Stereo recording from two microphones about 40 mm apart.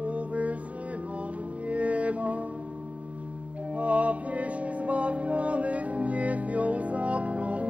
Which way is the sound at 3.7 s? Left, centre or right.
Right.